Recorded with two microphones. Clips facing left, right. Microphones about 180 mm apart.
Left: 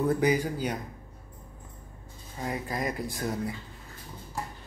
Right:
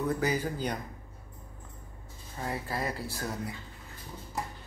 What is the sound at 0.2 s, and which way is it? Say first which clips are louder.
Speech: left 4 dB; 15° left (ahead or behind).